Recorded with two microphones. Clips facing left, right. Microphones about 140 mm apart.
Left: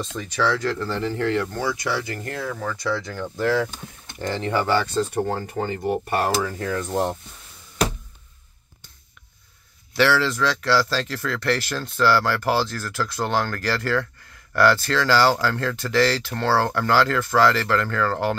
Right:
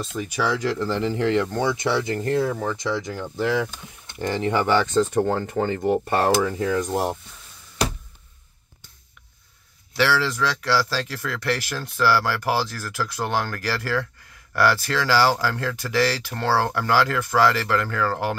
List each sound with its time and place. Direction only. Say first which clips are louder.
0.0 s speech: left 1 dB; 10° right (ahead or behind)
9.9 s speech: left 2 dB; 5° right (ahead or behind)